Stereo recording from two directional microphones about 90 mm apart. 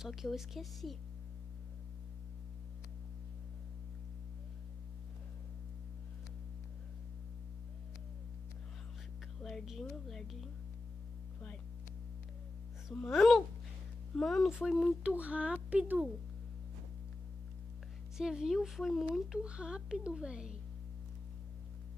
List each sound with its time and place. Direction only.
0.0 s speech: 5° right (ahead or behind)
9.4 s music: 5° left (ahead or behind)
10.0 s speech: centre (ahead or behind)
13.0 s speech: 5° left (ahead or behind)
15.1 s speech: 15° right (ahead or behind)
18.1 s speech: 5° right (ahead or behind)